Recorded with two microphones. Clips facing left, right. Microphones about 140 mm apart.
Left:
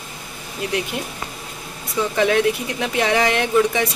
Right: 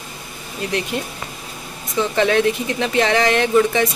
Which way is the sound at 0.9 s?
10° left (ahead or behind).